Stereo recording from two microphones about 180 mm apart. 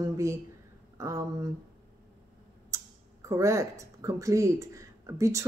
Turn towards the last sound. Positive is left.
turn(degrees=-15)  # may be behind; listen again after turning